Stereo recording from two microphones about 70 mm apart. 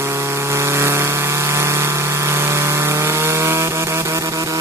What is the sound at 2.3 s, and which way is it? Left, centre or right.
Wood, right.